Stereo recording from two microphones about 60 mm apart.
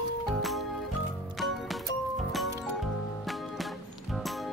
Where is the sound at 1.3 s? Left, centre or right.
Centre.